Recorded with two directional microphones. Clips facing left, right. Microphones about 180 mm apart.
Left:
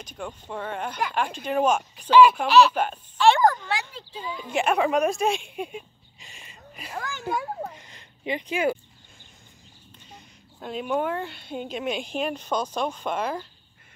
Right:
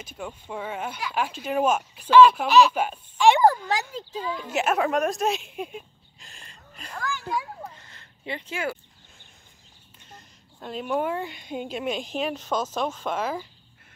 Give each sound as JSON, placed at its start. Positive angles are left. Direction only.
{"t": 0.0, "sound": "speech", "side_deg": -5}
{"t": 2.0, "sound": "speech", "side_deg": 15}
{"t": 2.3, "sound": "speech", "side_deg": -5}
{"t": 3.7, "sound": "a child's voice", "side_deg": -40}
{"t": 4.5, "sound": "speech", "side_deg": -5}
{"t": 7.0, "sound": "a sound", "side_deg": 20}
{"t": 7.2, "sound": "a child's voice", "side_deg": 50}
{"t": 7.7, "sound": "a sound", "side_deg": 15}
{"t": 10.0, "sound": "speech", "side_deg": 0}
{"t": 11.6, "sound": "speech", "side_deg": 0}